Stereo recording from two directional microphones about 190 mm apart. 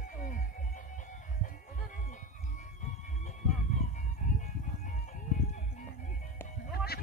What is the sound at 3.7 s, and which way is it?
Music, 40° left (ahead or behind).